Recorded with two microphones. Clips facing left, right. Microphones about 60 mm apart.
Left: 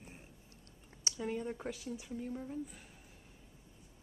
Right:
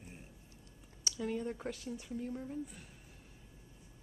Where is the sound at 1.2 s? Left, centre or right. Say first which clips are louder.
Right 1 dB; centre.